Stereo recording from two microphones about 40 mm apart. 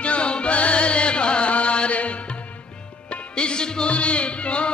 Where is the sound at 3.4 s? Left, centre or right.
Left.